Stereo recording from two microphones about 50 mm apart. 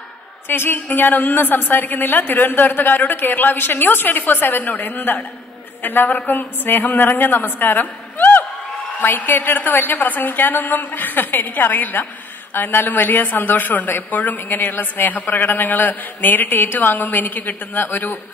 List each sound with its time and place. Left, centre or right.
0.5 s a woman's voice: left